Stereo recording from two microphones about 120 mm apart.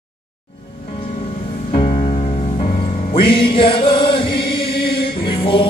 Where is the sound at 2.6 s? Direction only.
50° left (ahead or behind).